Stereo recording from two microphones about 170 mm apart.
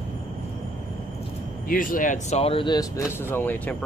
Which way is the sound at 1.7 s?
55° left (ahead or behind).